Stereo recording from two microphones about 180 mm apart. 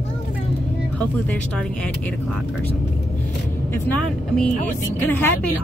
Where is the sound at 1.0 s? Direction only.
5° left (ahead or behind).